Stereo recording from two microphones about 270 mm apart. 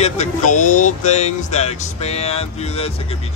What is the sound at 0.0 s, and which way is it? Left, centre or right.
Speech, left.